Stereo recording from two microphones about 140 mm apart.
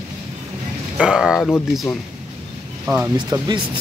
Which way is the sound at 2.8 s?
15° right (ahead or behind).